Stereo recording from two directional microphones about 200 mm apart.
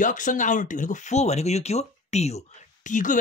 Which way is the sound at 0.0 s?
40° left (ahead or behind).